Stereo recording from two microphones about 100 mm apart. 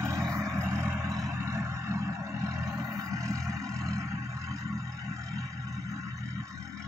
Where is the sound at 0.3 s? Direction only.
30° right (ahead or behind).